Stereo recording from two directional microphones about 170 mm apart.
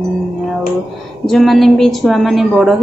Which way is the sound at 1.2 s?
Centre (ahead or behind).